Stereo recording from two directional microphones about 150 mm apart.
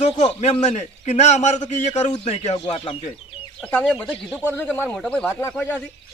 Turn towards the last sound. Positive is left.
turn(degrees=10)  # may be behind; listen again after turning